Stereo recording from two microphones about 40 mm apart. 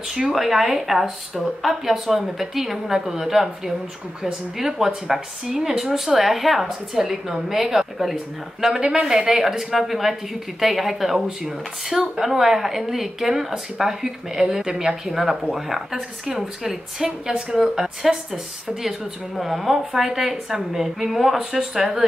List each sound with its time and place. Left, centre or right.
0.3 s speech: centre
11.4 s speech: centre
12.2 s speech: centre